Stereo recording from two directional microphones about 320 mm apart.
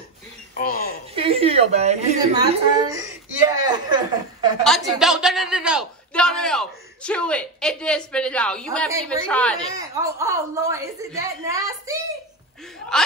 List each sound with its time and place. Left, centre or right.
0.6 s a sound: left
1.1 s a woman's voice: centre
4.6 s a man's voice: centre
9.8 s a woman's voice: centre